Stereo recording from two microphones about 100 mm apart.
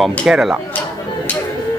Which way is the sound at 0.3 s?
5° right (ahead or behind).